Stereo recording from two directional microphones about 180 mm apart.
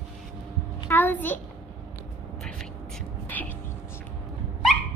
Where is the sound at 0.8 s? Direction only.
10° left (ahead or behind).